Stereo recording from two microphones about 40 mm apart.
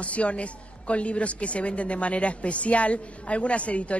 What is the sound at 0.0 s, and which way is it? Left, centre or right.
A woman's voice, left.